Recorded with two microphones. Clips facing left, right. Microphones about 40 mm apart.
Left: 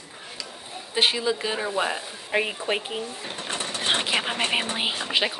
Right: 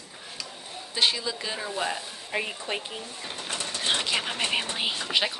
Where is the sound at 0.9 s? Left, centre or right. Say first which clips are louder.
Left 4 dB; left.